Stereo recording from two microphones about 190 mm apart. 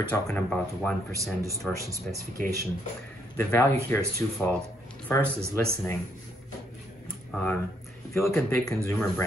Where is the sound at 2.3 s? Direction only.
50° right (ahead or behind).